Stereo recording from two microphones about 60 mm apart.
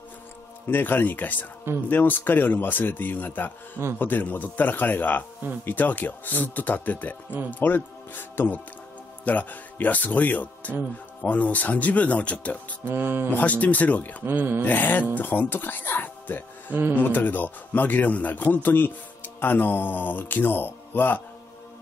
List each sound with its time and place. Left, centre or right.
0.7 s a man's voice: left
12.8 s speech: right
13.3 s speech: left
14.2 s speech: right
14.6 s a man's voice: left